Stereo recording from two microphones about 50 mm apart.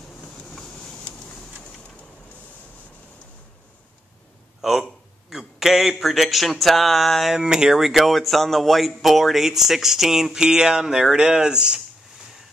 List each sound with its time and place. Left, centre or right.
0.5 s a sound: centre
4.6 s speech: centre
7.3 s speech: centre